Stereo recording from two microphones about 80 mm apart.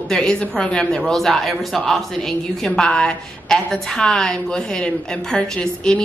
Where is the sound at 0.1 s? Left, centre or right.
Centre.